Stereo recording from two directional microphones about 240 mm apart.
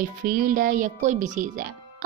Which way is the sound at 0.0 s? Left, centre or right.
Right.